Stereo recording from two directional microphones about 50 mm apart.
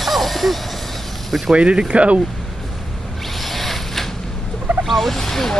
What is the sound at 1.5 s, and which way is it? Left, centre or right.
Speech, centre.